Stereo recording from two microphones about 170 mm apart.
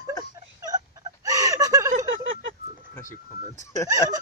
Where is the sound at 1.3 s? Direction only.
20° right (ahead or behind).